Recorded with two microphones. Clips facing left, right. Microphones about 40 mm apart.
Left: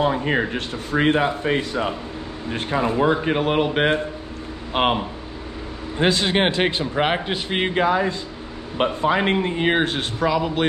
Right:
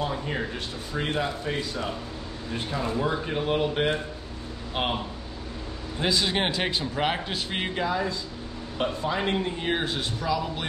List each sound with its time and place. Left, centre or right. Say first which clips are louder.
0.0 s a man's voice: left 9 dB; left